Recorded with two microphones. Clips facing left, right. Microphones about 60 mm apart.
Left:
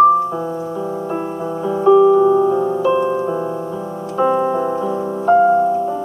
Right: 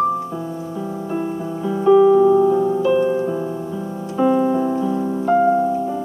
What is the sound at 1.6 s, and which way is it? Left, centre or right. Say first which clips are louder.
Music: left 2 dB; centre.